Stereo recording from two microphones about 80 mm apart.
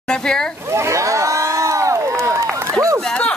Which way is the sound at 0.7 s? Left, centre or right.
Right.